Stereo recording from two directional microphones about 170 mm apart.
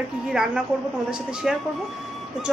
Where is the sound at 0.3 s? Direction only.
5° right (ahead or behind).